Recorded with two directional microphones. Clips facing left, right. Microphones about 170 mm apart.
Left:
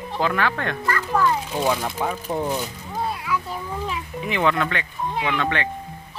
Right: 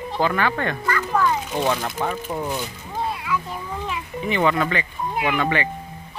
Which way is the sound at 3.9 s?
Centre (ahead or behind).